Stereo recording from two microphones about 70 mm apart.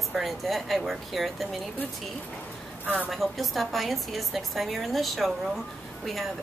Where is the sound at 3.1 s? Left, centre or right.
Centre.